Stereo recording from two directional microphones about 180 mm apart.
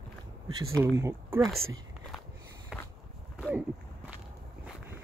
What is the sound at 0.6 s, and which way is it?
Speech, 15° right (ahead or behind).